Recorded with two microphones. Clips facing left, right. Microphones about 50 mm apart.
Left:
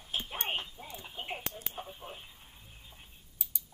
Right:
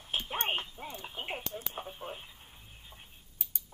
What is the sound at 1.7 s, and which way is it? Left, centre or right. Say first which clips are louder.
Radio: right 3 dB; right.